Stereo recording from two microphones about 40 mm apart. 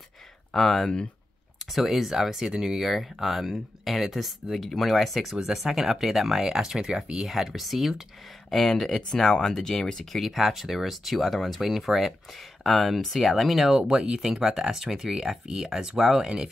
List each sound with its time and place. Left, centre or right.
0.5 s speech: centre
1.7 s speech: centre
8.5 s speech: centre
10.2 s speech: centre
13.7 s speech: centre